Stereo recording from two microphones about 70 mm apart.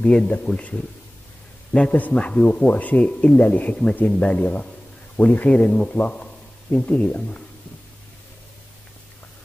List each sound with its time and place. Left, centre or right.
0.0 s a man's voice: centre